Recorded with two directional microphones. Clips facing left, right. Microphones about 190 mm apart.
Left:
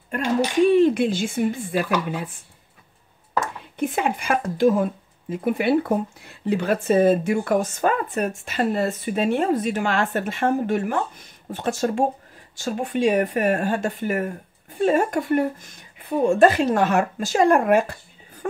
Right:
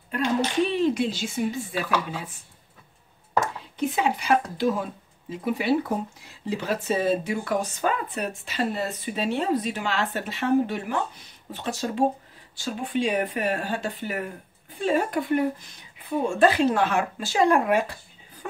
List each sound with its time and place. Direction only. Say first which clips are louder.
0.7 s speech: left 7 dB; 55° left (ahead or behind)
3.7 s speech: left 2 dB; 55° left (ahead or behind)
18.4 s a sound: left 9 dB; 45° left (ahead or behind)